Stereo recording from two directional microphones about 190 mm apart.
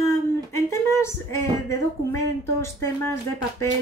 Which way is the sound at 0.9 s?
15° left (ahead or behind).